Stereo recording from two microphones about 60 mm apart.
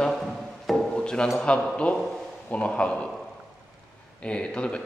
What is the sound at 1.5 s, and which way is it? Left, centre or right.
A man's voice, centre.